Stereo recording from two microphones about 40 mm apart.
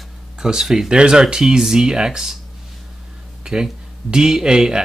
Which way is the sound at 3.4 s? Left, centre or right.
Centre.